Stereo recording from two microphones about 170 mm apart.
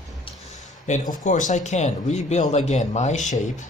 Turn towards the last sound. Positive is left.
turn(degrees=45)  # may be behind; listen again after turning